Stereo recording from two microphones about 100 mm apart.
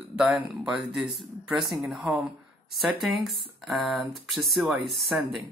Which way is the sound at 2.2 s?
5° right (ahead or behind).